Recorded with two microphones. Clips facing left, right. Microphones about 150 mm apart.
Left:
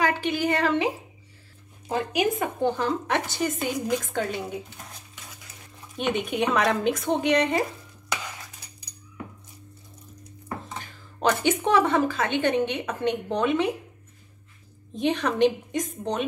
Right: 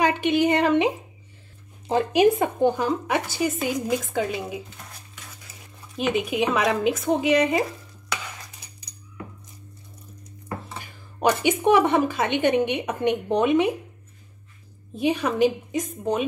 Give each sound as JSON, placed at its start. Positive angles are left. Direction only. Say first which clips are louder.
{"t": 0.0, "sound": "speech", "louder": "right 4 dB", "side_deg": -20}
{"t": 2.6, "sound": "speech", "louder": "right 3 dB", "side_deg": -15}
{"t": 5.9, "sound": "a woman's voice", "louder": "right 2 dB", "side_deg": 0}
{"t": 10.8, "sound": "speech", "louder": "right 3 dB", "side_deg": -10}
{"t": 15.0, "sound": "a woman's voice", "louder": "right 1 dB", "side_deg": -5}